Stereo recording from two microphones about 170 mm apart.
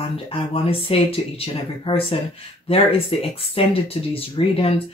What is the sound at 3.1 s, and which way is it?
Speech, 35° left (ahead or behind).